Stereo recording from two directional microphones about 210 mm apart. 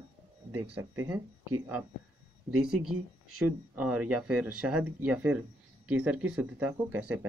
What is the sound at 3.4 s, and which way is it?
Speech, 5° right (ahead or behind).